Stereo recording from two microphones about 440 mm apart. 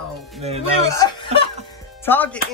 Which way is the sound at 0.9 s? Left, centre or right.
Centre.